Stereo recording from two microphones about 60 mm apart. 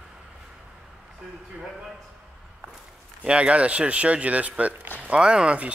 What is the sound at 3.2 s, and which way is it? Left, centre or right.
A man's voice, centre.